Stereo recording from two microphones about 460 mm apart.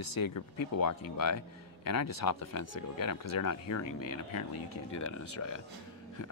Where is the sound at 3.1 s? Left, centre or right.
Left.